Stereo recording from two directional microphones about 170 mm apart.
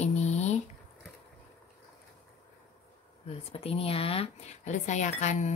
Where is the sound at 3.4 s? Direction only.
35° left (ahead or behind).